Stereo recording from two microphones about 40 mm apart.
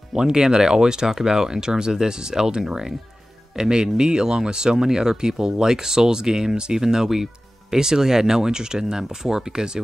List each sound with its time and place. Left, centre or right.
0.1 s speech: centre